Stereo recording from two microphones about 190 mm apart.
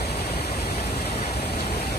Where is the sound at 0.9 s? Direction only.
55° left (ahead or behind).